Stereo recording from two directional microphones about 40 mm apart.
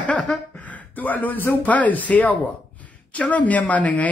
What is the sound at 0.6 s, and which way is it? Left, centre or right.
Speech, left.